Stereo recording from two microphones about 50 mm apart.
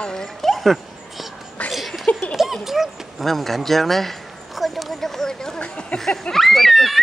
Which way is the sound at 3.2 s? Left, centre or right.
Centre.